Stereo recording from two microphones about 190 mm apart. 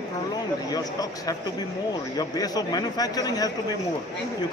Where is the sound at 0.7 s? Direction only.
20° left (ahead or behind).